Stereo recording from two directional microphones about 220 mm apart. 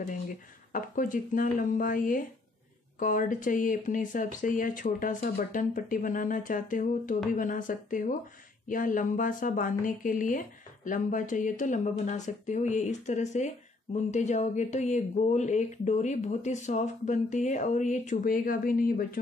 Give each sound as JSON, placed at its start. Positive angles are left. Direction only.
{"t": 0.7, "sound": "speech", "side_deg": 35}